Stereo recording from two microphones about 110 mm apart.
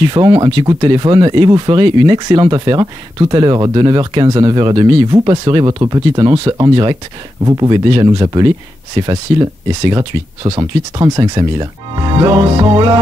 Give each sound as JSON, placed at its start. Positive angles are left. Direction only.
{"t": 0.0, "sound": "speech", "side_deg": -40}